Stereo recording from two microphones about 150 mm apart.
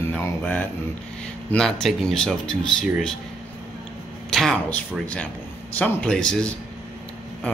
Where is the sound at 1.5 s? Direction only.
5° left (ahead or behind).